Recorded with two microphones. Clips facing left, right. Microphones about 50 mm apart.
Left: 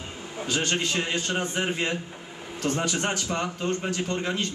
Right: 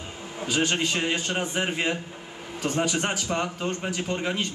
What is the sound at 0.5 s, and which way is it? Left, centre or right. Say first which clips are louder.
Speech: right 2 dB; centre.